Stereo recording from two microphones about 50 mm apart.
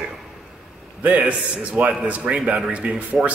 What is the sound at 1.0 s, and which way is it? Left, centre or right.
A man's voice, right.